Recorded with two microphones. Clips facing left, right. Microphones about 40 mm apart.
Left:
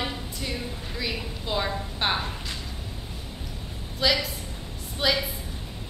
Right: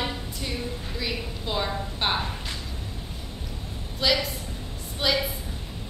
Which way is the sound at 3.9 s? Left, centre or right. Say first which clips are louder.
Even; centre.